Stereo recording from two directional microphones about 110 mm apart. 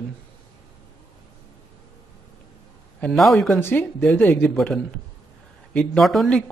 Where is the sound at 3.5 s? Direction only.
20° left (ahead or behind).